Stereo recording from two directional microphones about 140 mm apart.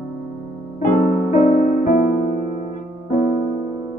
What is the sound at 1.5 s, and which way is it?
Music, 70° left (ahead or behind).